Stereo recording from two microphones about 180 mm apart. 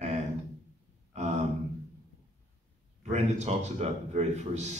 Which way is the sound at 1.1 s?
40° right (ahead or behind).